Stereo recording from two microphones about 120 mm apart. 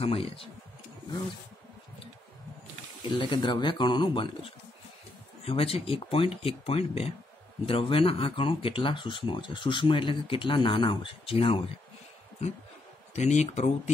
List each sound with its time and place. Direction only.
0.0 s speech: 50° left (ahead or behind)
3.2 s speech: 40° left (ahead or behind)
5.4 s speech: 55° left (ahead or behind)
13.1 s speech: 70° left (ahead or behind)